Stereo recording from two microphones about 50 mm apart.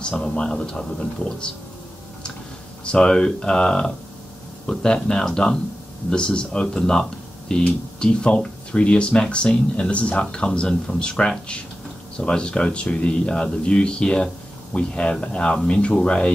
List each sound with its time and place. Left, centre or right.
0.0 s speech: centre
3.0 s speech: centre